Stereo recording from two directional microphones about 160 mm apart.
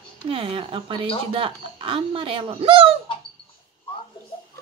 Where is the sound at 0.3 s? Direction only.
35° right (ahead or behind).